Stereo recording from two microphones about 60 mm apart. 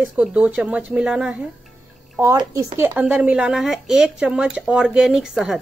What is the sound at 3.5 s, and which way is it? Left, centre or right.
Speech, centre.